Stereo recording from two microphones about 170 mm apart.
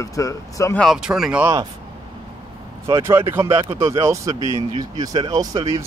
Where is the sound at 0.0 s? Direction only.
20° left (ahead or behind).